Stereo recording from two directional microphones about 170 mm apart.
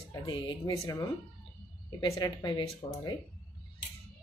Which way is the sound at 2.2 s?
25° left (ahead or behind).